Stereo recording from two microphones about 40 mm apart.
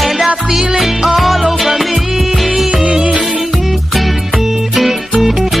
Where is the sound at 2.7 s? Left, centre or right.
Right.